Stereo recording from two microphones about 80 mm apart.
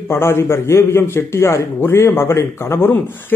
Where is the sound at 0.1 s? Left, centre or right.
Left.